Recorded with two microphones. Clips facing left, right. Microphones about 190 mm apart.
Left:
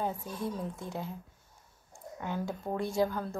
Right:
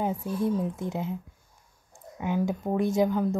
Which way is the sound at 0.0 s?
15° right (ahead or behind).